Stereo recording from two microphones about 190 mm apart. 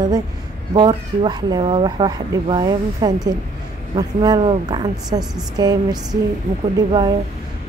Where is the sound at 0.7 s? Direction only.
20° right (ahead or behind).